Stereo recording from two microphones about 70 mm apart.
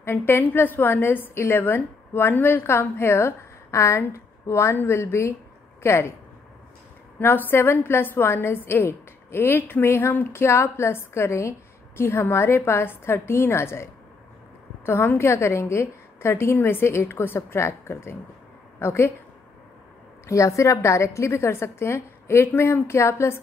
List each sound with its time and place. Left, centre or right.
0.0 s a woman's voice: left
7.2 s a woman's voice: left
14.9 s a woman's voice: left
20.2 s a woman's voice: left